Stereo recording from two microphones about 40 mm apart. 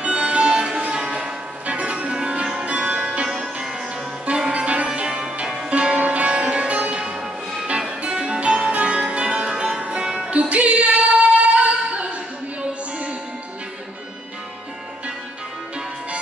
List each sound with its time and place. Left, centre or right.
0.0 s music: right
4.4 s music: right
7.0 s music: right
10.3 s music: right
11.5 s singing: right